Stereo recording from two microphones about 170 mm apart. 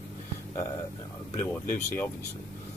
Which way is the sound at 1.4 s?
15° left (ahead or behind).